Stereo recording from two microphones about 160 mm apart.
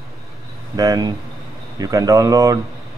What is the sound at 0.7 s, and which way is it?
Speech, 25° right (ahead or behind).